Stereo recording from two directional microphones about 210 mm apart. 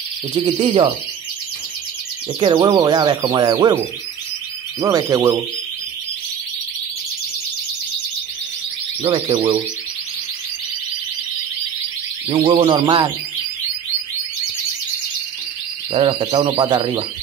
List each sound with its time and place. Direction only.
0.5 s speech: 25° right (ahead or behind)
2.4 s speech: 20° right (ahead or behind)
4.7 s speech: 15° right (ahead or behind)
9.0 s speech: 25° right (ahead or behind)
12.3 s speech: 25° right (ahead or behind)
15.9 s speech: 25° right (ahead or behind)